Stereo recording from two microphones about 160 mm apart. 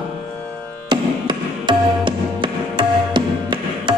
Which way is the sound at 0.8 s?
30° right (ahead or behind).